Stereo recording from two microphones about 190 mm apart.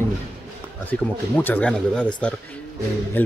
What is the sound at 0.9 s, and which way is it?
Speech, 10° left (ahead or behind).